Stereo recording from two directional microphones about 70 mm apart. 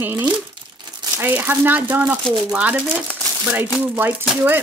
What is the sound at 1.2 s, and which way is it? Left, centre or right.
Speech, right.